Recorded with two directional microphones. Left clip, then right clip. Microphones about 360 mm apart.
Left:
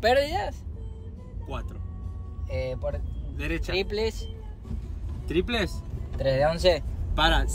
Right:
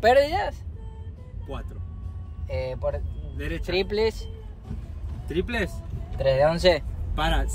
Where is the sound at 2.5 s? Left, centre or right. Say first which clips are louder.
Right 3 dB; centre.